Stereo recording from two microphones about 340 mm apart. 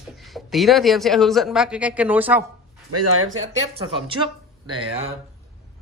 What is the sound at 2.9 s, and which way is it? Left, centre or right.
Speech, right.